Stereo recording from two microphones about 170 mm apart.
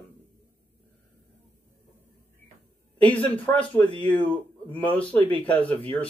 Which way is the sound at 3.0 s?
10° left (ahead or behind).